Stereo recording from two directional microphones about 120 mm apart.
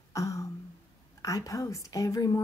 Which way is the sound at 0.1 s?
25° left (ahead or behind).